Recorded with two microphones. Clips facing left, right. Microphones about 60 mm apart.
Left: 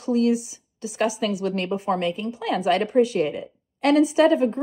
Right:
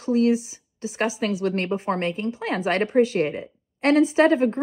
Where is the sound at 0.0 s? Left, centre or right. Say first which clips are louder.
Right 1 dB; right.